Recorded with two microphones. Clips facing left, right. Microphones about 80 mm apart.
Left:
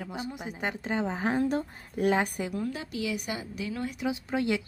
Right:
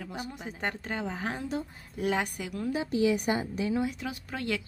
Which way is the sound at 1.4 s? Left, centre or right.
Left.